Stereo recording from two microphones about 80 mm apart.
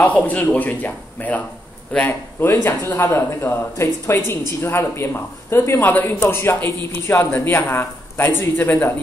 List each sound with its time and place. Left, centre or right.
0.0 s a man's voice: centre
2.5 s speech: left